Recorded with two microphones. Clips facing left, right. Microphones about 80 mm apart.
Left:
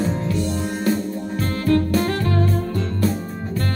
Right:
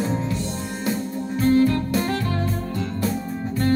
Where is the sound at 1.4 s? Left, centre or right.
Left.